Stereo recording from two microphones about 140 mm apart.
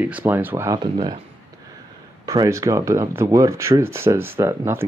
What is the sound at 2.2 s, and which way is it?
Speech, 25° right (ahead or behind).